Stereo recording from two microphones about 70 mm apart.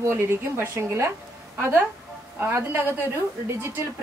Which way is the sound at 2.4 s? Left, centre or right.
Right.